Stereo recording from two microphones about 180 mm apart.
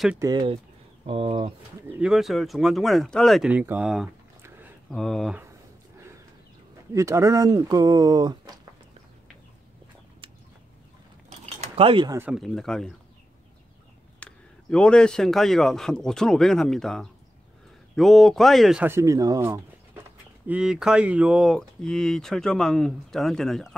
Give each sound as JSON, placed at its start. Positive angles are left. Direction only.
{"t": 0.2, "sound": "speech", "side_deg": -25}
{"t": 1.9, "sound": "speech", "side_deg": -5}
{"t": 6.9, "sound": "speech", "side_deg": -15}
{"t": 11.2, "sound": "mechanisms", "side_deg": -35}
{"t": 12.1, "sound": "speech", "side_deg": -10}
{"t": 12.4, "sound": "speech", "side_deg": 0}
{"t": 14.2, "sound": "speech", "side_deg": 5}
{"t": 20.4, "sound": "speech", "side_deg": -5}